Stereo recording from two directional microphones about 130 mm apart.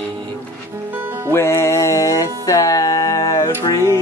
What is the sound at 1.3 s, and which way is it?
Music, 20° left (ahead or behind).